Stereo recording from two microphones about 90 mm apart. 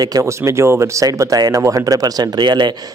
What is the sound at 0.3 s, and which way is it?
A man's voice, 30° right (ahead or behind).